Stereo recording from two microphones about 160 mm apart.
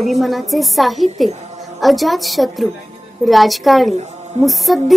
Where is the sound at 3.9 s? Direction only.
45° right (ahead or behind).